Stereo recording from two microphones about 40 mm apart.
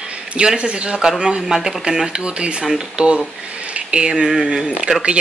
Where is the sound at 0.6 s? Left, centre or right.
Right.